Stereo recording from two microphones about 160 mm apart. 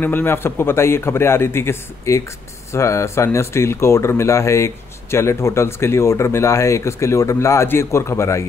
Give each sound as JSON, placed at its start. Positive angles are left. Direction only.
{"t": 0.0, "sound": "speech", "side_deg": 15}